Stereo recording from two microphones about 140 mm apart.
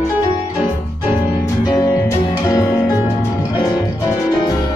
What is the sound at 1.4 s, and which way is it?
Music, 25° left (ahead or behind).